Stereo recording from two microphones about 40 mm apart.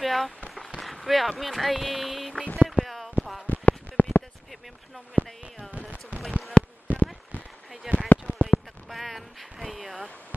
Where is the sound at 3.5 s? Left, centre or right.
Left.